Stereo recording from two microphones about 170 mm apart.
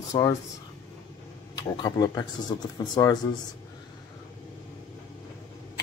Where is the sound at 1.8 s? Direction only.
25° left (ahead or behind).